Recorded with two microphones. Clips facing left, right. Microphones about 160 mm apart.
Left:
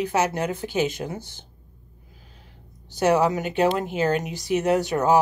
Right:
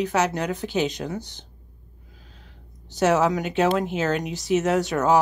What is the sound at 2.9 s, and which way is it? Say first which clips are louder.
Speech: even; centre (ahead or behind).